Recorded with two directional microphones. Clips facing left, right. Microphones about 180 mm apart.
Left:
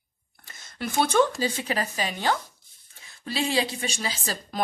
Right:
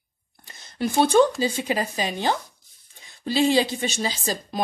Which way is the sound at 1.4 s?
15° right (ahead or behind).